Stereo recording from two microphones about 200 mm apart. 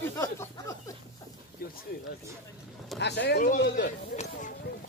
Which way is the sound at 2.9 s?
55° left (ahead or behind).